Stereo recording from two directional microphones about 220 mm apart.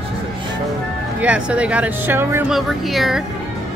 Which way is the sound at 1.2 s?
5° right (ahead or behind).